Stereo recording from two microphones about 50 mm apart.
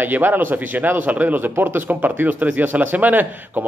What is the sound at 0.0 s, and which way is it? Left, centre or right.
Speech, right.